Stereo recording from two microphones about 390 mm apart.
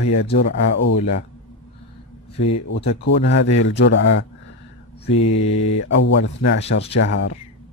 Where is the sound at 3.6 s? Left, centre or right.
Left.